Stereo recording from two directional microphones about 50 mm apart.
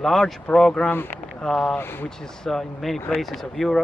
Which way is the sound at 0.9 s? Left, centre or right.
Left.